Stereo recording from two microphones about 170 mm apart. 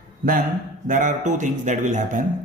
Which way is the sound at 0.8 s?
45° right (ahead or behind).